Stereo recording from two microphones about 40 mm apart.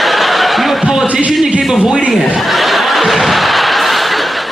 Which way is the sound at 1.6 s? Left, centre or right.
Centre.